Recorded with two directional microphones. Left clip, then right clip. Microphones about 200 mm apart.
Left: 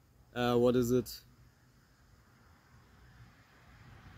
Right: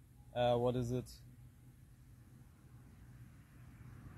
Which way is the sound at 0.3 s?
Centre (ahead or behind).